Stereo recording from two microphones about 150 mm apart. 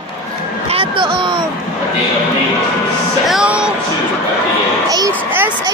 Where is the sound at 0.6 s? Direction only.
35° right (ahead or behind).